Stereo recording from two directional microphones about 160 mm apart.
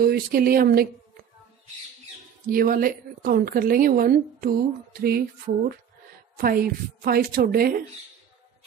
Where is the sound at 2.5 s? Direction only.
60° right (ahead or behind).